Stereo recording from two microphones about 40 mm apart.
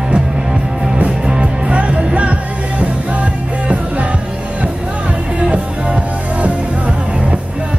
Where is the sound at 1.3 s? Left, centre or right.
Right.